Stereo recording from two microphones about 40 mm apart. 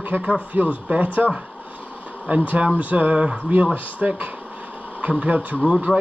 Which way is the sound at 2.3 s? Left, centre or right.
Right.